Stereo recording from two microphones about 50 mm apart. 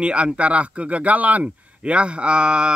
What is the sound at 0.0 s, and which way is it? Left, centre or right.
Speech, right.